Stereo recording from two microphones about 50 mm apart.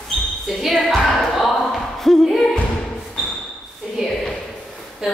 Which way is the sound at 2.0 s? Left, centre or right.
Centre.